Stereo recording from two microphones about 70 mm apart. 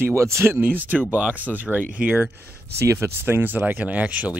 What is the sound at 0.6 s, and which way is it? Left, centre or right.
Speech, right.